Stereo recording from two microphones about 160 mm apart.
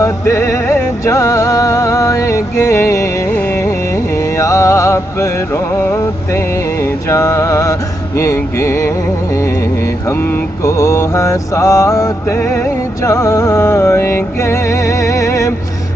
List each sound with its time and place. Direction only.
0.0 s music: 20° left (ahead or behind)
8.2 s mantra: 15° left (ahead or behind)
10.6 s mantra: 20° left (ahead or behind)
13.0 s music: 20° left (ahead or behind)